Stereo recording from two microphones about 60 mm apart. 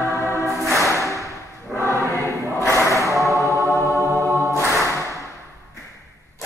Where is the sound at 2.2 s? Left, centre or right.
Right.